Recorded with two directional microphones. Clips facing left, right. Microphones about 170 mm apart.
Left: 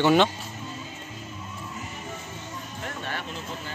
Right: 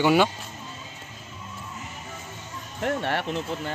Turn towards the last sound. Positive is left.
turn(degrees=-65)  # may be behind; listen again after turning